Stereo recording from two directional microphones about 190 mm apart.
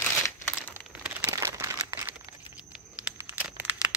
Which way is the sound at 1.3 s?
15° right (ahead or behind).